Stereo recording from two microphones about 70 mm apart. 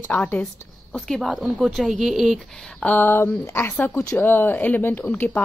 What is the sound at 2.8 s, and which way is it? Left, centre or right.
Speech, left.